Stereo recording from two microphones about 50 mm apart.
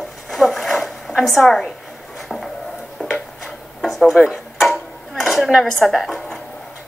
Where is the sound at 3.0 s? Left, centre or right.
Left.